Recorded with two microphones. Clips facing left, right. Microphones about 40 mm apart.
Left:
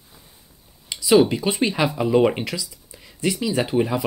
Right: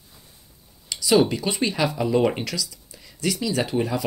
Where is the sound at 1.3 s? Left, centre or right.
Centre.